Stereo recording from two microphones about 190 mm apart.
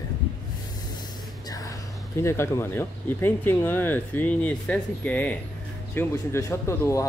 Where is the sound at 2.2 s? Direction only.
15° left (ahead or behind).